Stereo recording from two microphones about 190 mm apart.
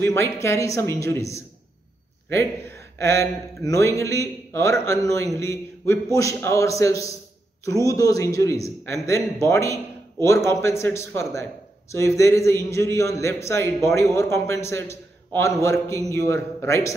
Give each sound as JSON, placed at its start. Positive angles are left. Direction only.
{"t": 0.0, "sound": "a man's voice", "side_deg": 15}